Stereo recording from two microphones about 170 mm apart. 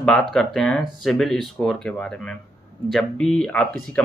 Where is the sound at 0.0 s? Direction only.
Centre (ahead or behind).